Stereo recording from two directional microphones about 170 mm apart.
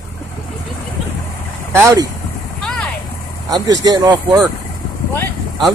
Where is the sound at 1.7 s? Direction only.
20° right (ahead or behind).